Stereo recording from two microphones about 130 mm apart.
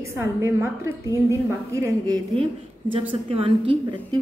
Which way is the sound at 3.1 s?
45° right (ahead or behind).